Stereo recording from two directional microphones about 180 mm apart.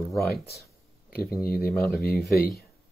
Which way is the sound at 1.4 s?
55° left (ahead or behind).